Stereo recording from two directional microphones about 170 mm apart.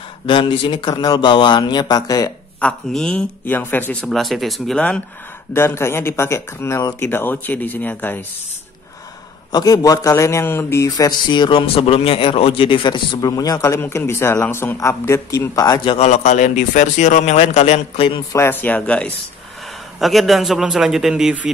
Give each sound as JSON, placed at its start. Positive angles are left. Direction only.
{"t": 0.3, "sound": "a man's voice", "side_deg": 30}
{"t": 2.6, "sound": "speech", "side_deg": 5}
{"t": 9.5, "sound": "a man's voice", "side_deg": 20}
{"t": 16.1, "sound": "a man's voice", "side_deg": 45}
{"t": 18.3, "sound": "speech", "side_deg": 15}